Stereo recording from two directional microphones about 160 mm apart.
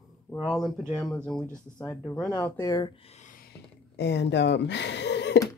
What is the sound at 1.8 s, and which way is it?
Speech, 20° left (ahead or behind).